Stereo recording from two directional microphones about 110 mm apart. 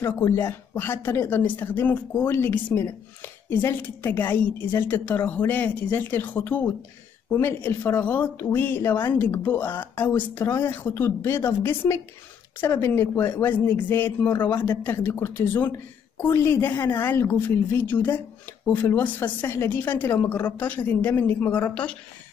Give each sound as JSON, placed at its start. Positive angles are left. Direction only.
{"t": 0.4, "sound": "a woman's voice", "side_deg": 20}